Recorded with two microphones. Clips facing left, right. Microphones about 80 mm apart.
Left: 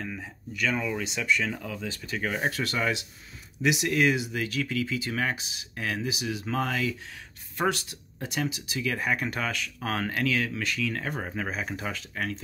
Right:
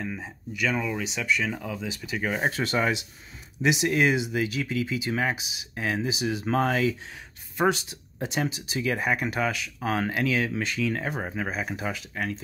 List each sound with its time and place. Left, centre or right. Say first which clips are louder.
0.0 s speech: right 3 dB; centre
2.4 s speech: right 4 dB; right
7.5 s speech: right 3 dB; centre
9.1 s speech: right 3 dB; centre